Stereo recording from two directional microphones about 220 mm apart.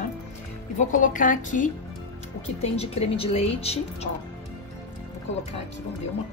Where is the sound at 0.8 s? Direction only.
35° left (ahead or behind).